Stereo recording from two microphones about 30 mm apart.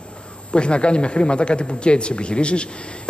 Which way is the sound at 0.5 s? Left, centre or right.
Left.